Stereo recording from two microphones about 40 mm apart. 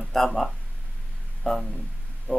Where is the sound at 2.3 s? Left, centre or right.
Left.